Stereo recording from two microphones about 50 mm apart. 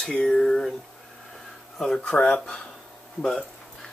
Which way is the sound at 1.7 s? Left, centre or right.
Centre.